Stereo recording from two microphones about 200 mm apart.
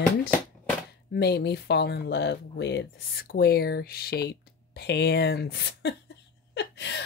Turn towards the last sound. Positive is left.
turn(degrees=60)  # may be behind; listen again after turning